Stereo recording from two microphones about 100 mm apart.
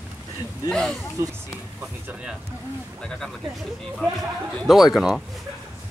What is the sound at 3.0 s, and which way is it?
Speech, 5° left (ahead or behind).